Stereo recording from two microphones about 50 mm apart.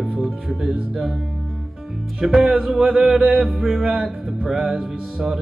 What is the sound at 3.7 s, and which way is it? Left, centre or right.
Music, centre.